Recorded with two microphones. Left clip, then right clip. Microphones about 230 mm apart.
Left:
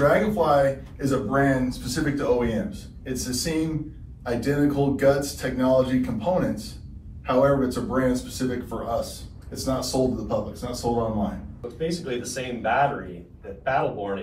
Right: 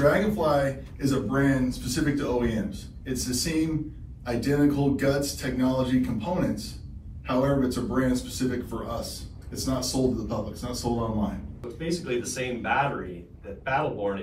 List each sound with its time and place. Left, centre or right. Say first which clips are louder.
0.0 s speech: left 3 dB; centre